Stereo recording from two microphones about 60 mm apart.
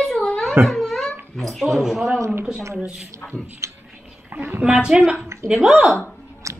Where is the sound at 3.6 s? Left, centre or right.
Right.